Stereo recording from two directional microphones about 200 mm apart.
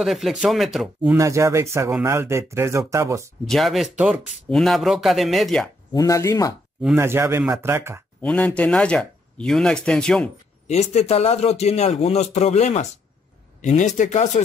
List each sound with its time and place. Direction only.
0.0 s speech: centre (ahead or behind)
1.1 s speech: 15° right (ahead or behind)
3.4 s speech: centre (ahead or behind)
5.9 s speech: 15° left (ahead or behind)
7.0 s speech: 10° right (ahead or behind)
8.2 s speech: 5° left (ahead or behind)
10.7 s a man's voice: 35° left (ahead or behind)